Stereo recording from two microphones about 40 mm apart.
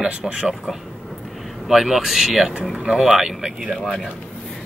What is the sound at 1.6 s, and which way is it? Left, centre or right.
Speech, centre.